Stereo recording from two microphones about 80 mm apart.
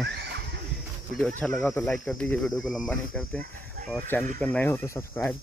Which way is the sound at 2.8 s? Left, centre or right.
Centre.